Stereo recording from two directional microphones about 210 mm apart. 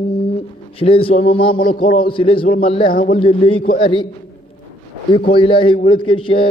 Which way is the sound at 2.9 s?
40° left (ahead or behind).